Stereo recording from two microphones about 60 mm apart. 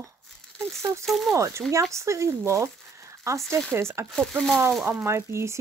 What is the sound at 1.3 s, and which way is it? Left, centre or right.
Speech, right.